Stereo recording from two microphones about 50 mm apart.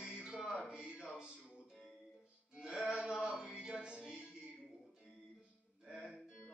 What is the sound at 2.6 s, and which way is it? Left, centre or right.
Music, centre.